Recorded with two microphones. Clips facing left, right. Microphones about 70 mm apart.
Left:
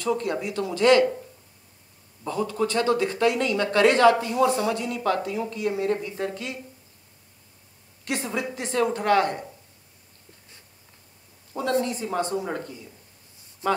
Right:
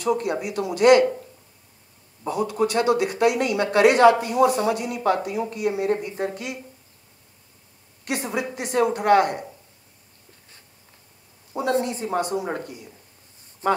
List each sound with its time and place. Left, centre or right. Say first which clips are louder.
0.0 s speech: right 2 dB; centre
2.2 s speech: right 3 dB; centre
8.1 s speech: right 2 dB; centre
11.8 s speech: right 2 dB; right
12.2 s speech: right 1 dB; centre
13.6 s speech: right 3 dB; right